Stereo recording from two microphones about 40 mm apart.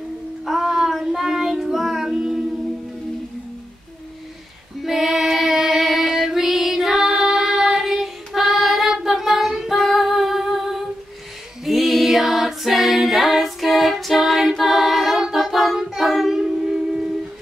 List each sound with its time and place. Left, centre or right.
0.5 s child singing: centre
4.8 s female singing: centre
11.6 s music: centre
14.6 s singing: centre
16.7 s a sound: centre